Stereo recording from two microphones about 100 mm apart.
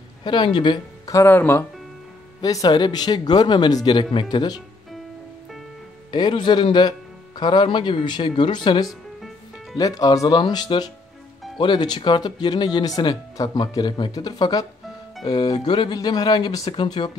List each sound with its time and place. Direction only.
0.2 s speech: 50° left (ahead or behind)
1.1 s speech: 25° left (ahead or behind)
2.4 s speech: 40° left (ahead or behind)
6.1 s speech: 50° left (ahead or behind)
8.8 s music: centre (ahead or behind)
9.8 s speech: 40° left (ahead or behind)